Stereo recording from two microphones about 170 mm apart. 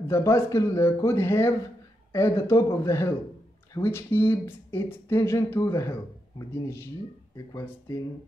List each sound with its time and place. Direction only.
0.1 s speech: 15° left (ahead or behind)